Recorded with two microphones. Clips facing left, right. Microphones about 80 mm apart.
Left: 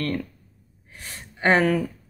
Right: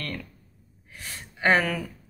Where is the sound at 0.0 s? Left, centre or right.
Left.